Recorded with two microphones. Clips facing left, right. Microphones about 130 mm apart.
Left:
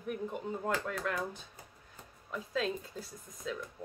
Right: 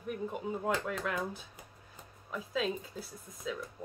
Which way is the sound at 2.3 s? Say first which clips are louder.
Right 1 dB; 5° right (ahead or behind).